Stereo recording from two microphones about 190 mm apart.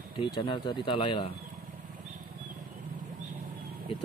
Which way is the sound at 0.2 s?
25° left (ahead or behind).